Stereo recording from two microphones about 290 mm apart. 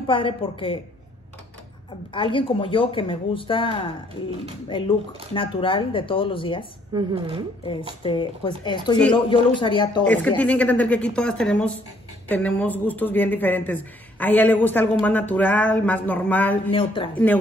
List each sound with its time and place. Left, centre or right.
0.0 s speech: centre
2.1 s speech: centre
6.9 s a woman's voice: centre
8.0 s speech: centre
10.0 s speech: centre
16.7 s speech: centre